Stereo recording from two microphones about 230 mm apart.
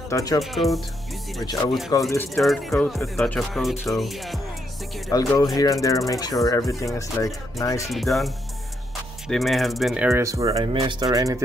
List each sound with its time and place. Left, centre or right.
0.1 s speech: centre
0.4 s speech: centre
1.4 s speech: centre
2.0 s speech: centre
5.1 s speech: centre
7.8 s speech: centre
9.3 s speech: centre